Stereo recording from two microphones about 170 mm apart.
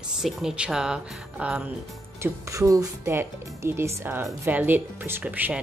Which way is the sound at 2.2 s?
20° right (ahead or behind).